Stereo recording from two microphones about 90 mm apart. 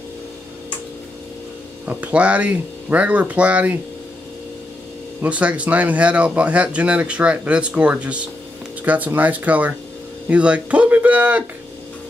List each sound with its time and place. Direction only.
1.9 s speech: 15° right (ahead or behind)
5.2 s speech: 15° right (ahead or behind)